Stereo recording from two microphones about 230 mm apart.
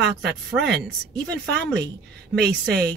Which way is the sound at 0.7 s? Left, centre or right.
Centre.